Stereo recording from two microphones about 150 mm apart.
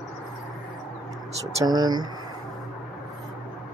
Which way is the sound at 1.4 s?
25° right (ahead or behind).